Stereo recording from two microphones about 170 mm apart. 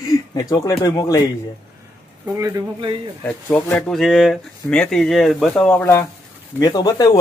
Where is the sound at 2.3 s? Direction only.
20° right (ahead or behind).